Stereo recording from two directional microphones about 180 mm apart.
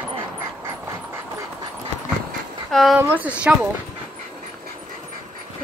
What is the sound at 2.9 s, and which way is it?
Speech, 10° right (ahead or behind).